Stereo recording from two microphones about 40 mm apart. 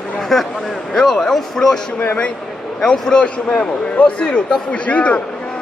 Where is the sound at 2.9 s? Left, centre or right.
Left.